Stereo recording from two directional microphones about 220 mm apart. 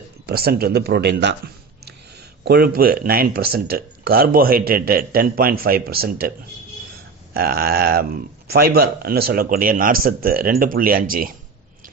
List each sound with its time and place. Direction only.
0.3 s speech: 45° right (ahead or behind)
2.4 s speech: 45° right (ahead or behind)
7.3 s speech: 45° right (ahead or behind)